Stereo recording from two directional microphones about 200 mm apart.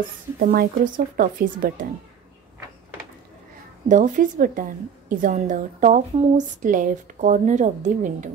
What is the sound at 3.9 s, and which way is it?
A woman's voice, 40° right (ahead or behind).